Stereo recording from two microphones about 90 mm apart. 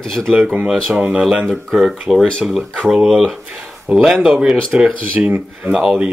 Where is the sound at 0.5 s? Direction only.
5° right (ahead or behind).